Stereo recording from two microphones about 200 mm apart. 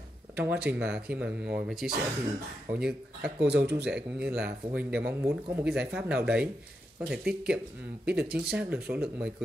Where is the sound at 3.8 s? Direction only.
5° right (ahead or behind).